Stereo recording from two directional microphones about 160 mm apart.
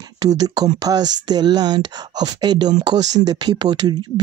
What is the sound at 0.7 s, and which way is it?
Speech, 25° right (ahead or behind).